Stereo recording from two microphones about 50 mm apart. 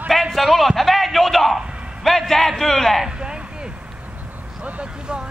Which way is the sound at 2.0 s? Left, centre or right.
Centre.